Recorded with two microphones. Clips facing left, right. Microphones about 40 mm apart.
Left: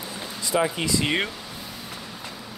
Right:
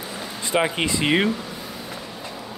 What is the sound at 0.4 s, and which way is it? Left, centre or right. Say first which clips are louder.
Speech: right 2 dB; right.